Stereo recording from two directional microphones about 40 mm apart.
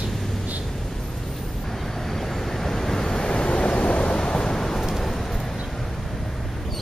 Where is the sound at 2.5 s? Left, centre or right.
Centre.